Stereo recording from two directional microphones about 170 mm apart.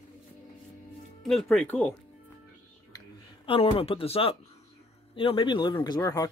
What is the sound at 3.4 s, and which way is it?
Speech, 35° left (ahead or behind).